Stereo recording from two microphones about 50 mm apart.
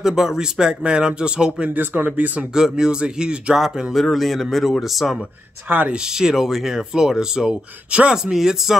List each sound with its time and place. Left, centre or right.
0.0 s speech: centre
1.7 s speech: right
2.5 s speech: centre
3.5 s speech: centre
5.7 s speech: right
6.0 s speech: centre
8.4 s speech: centre